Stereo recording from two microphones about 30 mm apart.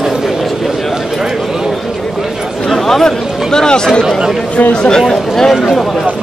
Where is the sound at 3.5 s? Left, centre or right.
Left.